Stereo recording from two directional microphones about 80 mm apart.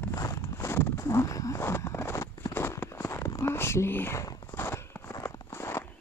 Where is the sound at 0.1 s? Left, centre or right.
Left.